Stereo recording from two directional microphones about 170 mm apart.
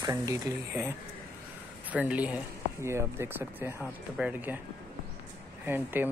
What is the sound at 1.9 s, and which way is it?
Speech, 10° right (ahead or behind).